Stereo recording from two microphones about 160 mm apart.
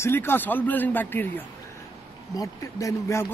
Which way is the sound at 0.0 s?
15° left (ahead or behind).